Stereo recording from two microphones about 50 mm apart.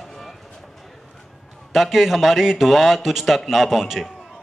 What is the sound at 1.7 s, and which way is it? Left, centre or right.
A man's voice, centre.